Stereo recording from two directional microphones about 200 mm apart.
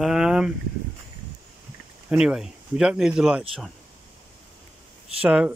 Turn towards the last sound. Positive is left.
turn(degrees=-5)  # may be behind; listen again after turning